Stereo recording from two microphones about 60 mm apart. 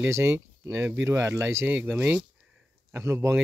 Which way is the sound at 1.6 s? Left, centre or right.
Right.